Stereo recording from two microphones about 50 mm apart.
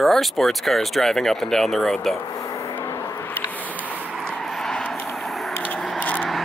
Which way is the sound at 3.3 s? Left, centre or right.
Left.